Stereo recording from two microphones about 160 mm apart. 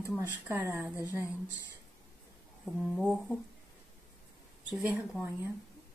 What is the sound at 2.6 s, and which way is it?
Speech, centre (ahead or behind).